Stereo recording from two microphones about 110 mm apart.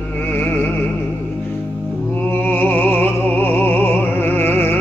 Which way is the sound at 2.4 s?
15° left (ahead or behind).